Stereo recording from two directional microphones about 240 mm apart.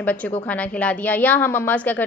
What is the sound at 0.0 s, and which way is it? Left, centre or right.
A woman's voice, centre.